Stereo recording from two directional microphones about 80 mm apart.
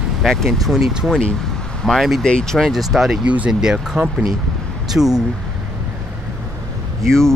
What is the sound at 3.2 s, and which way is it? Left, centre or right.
Speech, centre.